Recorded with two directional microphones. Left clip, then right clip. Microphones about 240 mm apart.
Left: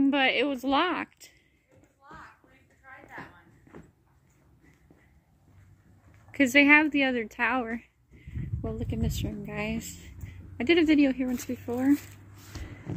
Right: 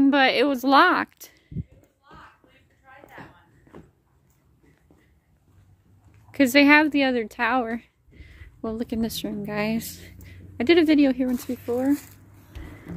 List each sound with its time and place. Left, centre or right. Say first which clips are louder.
0.0 s a woman's voice: right 6 dB; right
3.7 s a sound: right 3 dB; centre
6.3 s a woman's voice: right 3 dB; centre
8.2 s speech: right 4 dB; right; by 12.1 s centre